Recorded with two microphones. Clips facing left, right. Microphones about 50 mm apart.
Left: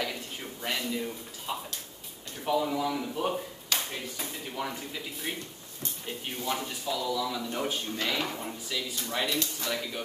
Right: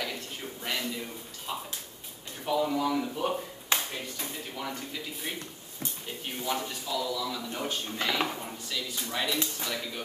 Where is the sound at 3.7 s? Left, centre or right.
Right.